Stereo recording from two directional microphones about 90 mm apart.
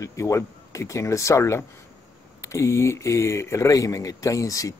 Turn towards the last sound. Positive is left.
turn(degrees=40)  # may be behind; listen again after turning